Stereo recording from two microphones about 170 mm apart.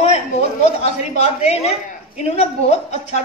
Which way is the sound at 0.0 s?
40° left (ahead or behind).